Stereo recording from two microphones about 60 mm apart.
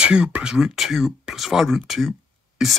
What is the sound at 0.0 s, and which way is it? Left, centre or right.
Speech, centre.